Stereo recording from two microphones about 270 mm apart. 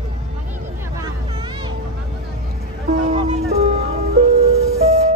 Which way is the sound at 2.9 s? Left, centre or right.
Right.